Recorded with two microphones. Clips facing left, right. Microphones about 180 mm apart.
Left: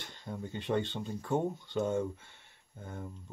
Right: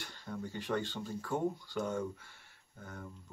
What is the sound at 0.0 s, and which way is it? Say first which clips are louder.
Speech: left 1 dB; 20° left (ahead or behind).